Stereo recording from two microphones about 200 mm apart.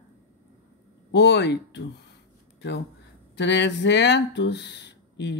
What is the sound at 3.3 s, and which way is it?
Speech, 60° left (ahead or behind).